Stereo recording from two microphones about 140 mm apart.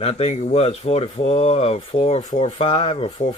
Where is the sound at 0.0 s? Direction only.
45° left (ahead or behind).